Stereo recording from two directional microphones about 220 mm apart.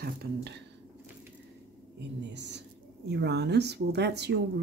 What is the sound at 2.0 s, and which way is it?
Speech, 50° right (ahead or behind).